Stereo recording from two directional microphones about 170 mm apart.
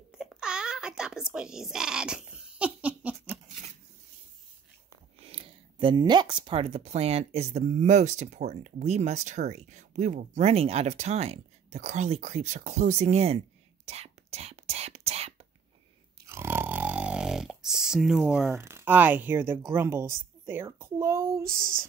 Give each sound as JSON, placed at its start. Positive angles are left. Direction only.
{"t": 0.1, "sound": "a sound", "side_deg": -5}
{"t": 3.3, "sound": "a sound", "side_deg": -40}
{"t": 5.2, "sound": "speech", "side_deg": -35}
{"t": 13.8, "sound": "whispering", "side_deg": -40}
{"t": 16.3, "sound": "snoring", "side_deg": -15}
{"t": 19.7, "sound": "speech", "side_deg": -15}